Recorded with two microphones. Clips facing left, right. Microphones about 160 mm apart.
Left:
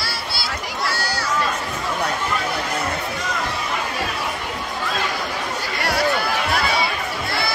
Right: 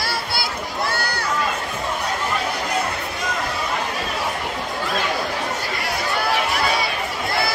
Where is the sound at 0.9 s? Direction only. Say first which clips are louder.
Even; 55° right (ahead or behind).